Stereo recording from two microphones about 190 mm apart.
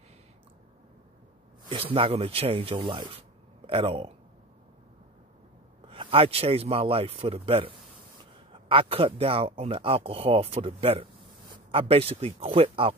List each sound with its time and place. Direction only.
1.7 s speech: 30° right (ahead or behind)
5.9 s speech: 30° right (ahead or behind)